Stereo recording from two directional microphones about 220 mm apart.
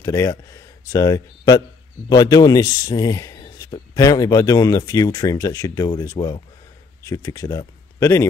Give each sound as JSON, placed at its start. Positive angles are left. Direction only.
{"t": 0.0, "sound": "a man's voice", "side_deg": 15}